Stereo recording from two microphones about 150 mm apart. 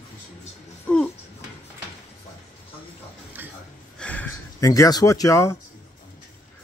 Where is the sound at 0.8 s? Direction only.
10° left (ahead or behind).